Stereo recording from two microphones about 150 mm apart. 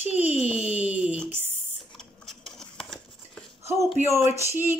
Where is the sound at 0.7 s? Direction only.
10° right (ahead or behind).